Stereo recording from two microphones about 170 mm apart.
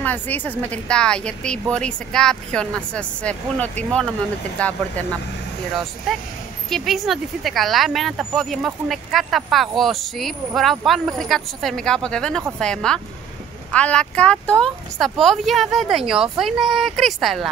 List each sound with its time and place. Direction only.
0.0 s speech: 10° left (ahead or behind)
6.1 s speech: centre (ahead or behind)